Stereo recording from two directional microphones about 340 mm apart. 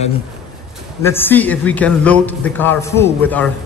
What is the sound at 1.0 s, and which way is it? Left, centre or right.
A man's voice, centre.